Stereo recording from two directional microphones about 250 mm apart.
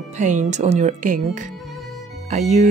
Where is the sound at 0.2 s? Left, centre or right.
Right.